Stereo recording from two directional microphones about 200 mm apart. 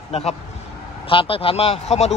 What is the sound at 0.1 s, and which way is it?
Speech, 30° left (ahead or behind).